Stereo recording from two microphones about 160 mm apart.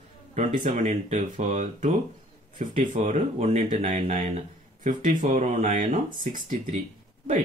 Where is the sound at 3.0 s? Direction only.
45° right (ahead or behind).